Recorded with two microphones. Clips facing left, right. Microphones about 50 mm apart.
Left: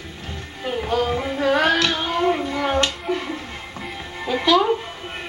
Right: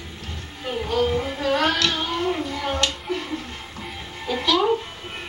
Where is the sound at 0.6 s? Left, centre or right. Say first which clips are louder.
Left 1 dB; centre.